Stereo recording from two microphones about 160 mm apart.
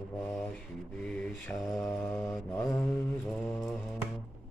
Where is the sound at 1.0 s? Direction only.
5° left (ahead or behind).